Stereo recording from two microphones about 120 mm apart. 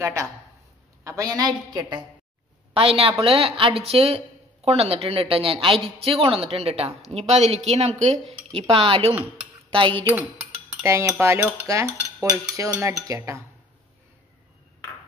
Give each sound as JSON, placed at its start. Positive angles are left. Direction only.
{"t": 0.0, "sound": "dishes", "side_deg": -25}
{"t": 1.0, "sound": "a woman's voice", "side_deg": -30}
{"t": 2.7, "sound": "a woman's voice", "side_deg": -50}
{"t": 8.3, "sound": "a sound", "side_deg": -50}
{"t": 8.7, "sound": "a woman's voice", "side_deg": -55}
{"t": 10.8, "sound": "dishes", "side_deg": -25}